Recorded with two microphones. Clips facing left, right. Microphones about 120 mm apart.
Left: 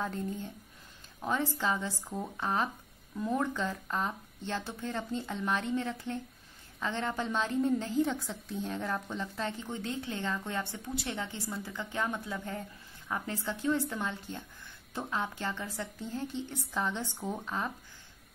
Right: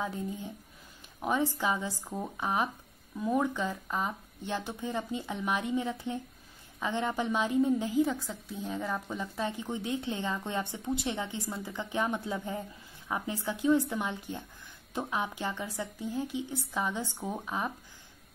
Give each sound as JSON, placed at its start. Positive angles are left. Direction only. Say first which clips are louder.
{"t": 0.0, "sound": "a woman's voice", "louder": "even", "side_deg": -10}